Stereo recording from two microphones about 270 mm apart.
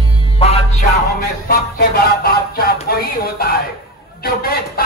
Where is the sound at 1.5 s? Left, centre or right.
Left.